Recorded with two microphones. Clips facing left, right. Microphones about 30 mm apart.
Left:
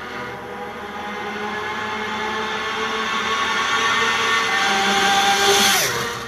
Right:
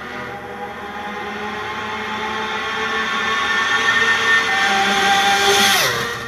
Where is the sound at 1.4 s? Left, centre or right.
Centre; by 6.1 s right.